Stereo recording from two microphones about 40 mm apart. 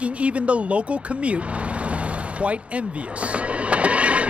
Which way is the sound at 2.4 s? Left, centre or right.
Right.